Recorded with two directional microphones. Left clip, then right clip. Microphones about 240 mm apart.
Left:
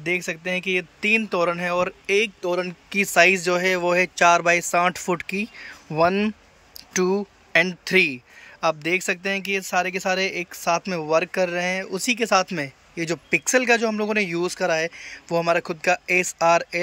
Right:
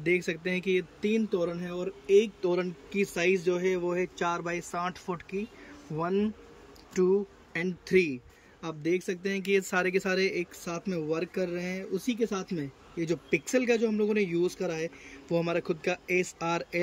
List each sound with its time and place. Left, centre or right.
0.0 s speech: centre
3.5 s speech: left
5.1 s speech: left
7.8 s speech: centre